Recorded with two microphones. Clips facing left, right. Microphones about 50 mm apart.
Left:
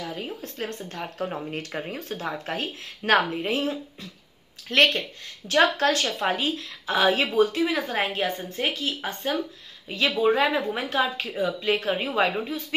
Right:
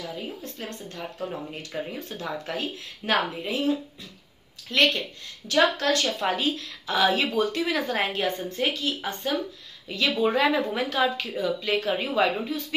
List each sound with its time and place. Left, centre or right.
0.0 s speech: left
5.5 s speech: left
7.5 s speech: centre
10.9 s speech: left